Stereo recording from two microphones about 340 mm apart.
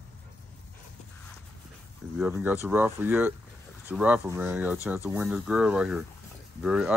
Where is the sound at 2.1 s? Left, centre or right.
Centre.